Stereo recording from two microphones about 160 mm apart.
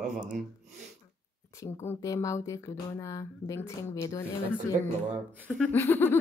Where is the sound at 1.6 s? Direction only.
15° left (ahead or behind).